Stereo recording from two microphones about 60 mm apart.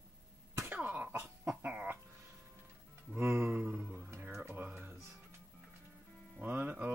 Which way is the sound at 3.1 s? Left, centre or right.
Right.